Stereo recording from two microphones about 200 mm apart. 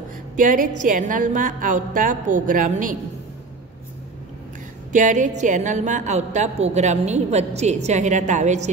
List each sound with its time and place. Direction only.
0.4 s a woman's voice: 40° right (ahead or behind)
4.9 s a woman's voice: 40° right (ahead or behind)